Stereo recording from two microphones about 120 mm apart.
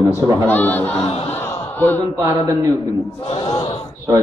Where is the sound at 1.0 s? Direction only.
55° left (ahead or behind).